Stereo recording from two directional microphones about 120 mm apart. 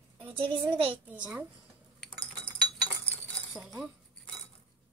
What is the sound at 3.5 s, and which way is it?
Chink, centre (ahead or behind).